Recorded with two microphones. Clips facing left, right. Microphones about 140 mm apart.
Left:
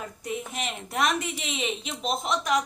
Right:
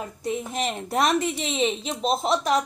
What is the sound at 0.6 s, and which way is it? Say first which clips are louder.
A woman's voice: right 4 dB; 35° right (ahead or behind).